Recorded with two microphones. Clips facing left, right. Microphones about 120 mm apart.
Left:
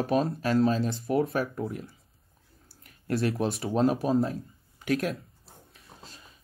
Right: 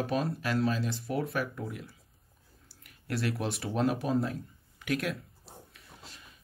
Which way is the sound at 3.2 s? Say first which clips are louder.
Left 4 dB; 30° left (ahead or behind).